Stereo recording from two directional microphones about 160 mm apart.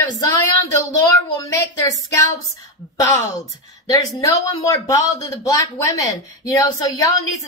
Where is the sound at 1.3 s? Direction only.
20° left (ahead or behind).